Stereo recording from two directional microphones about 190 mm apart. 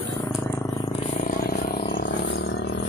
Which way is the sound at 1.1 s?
45° left (ahead or behind).